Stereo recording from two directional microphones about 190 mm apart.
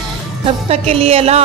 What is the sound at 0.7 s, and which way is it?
Music, 30° right (ahead or behind).